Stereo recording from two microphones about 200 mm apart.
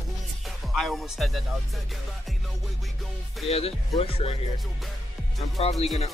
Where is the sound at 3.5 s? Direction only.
30° left (ahead or behind).